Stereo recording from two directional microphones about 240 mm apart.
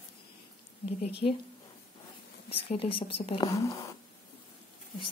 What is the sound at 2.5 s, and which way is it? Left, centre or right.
Speech, left.